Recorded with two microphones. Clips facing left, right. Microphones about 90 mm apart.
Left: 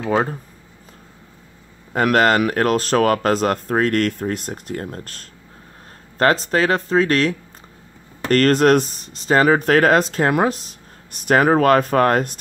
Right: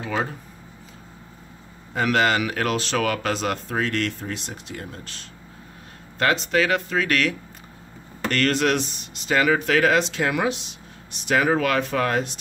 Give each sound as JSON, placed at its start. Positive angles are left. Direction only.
{"t": 0.1, "sound": "speech", "side_deg": 40}
{"t": 2.0, "sound": "speech", "side_deg": 50}